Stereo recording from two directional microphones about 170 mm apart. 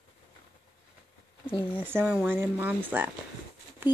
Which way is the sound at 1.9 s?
10° right (ahead or behind).